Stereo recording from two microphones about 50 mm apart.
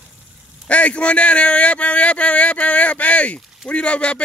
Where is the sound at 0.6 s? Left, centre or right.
Left.